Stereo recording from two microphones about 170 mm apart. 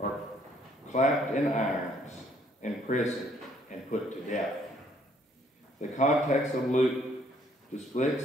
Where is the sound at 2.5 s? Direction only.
45° left (ahead or behind).